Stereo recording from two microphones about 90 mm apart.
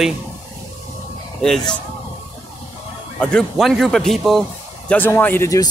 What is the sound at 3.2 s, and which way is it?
Speech, 10° left (ahead or behind).